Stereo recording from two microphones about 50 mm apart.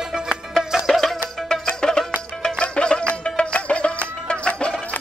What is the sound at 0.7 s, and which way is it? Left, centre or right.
Music, centre.